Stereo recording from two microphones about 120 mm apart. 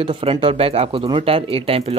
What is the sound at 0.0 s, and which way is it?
Speech, 50° right (ahead or behind).